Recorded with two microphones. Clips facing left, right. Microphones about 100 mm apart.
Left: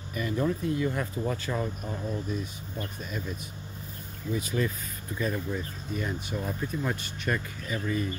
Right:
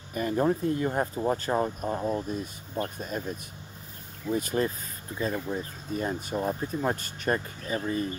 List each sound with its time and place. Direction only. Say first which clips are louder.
0.1 s speech: right 3 dB; 40° right (ahead or behind)
5.2 s speech: right 1 dB; 30° right (ahead or behind)